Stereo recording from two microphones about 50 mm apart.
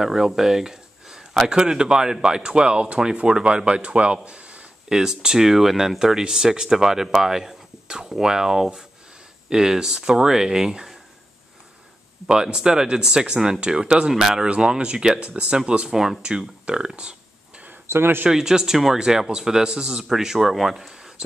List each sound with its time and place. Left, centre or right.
0.0 s speech: centre
4.8 s speech: centre
12.3 s speech: centre
16.2 s speech: centre
17.8 s speech: right
18.3 s speech: centre